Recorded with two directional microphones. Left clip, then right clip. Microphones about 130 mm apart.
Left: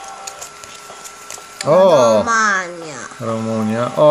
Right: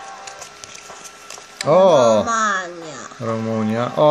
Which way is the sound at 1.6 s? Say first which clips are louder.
Left 2 dB; 5° right (ahead or behind).